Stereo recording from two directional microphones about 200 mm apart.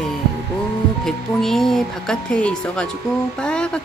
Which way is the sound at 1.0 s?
Centre (ahead or behind).